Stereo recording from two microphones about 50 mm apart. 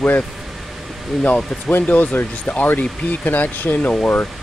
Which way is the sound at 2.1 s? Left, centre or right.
Left.